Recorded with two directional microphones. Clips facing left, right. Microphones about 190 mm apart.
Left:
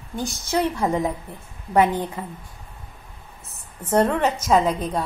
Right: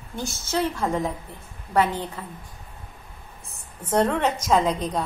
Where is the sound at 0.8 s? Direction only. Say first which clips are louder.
Left 3 dB; 15° left (ahead or behind).